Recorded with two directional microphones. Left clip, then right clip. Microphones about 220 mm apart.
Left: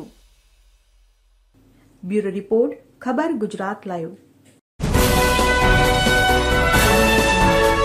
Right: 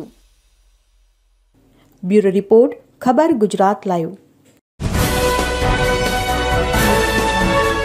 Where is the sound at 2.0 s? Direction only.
20° right (ahead or behind).